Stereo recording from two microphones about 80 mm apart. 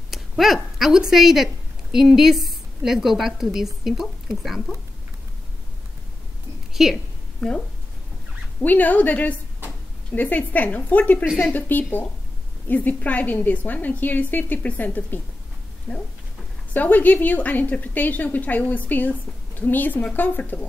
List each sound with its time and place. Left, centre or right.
0.1 s speech: centre
6.7 s a sound: centre
7.3 s speech: centre
8.6 s a woman's voice: left